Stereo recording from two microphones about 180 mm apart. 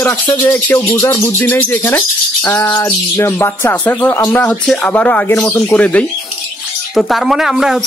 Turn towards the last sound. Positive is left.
turn(degrees=-5)  # may be behind; listen again after turning